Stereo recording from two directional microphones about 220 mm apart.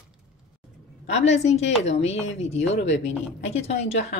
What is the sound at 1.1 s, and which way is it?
A woman's voice, 30° left (ahead or behind).